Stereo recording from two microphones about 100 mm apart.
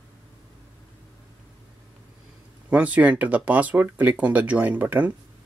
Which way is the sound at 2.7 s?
15° right (ahead or behind).